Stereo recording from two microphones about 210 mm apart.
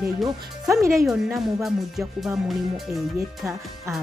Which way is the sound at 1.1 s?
Centre (ahead or behind).